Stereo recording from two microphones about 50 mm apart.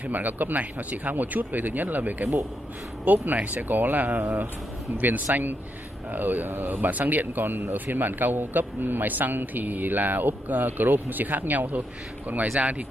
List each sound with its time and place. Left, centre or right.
0.0 s a man's voice: right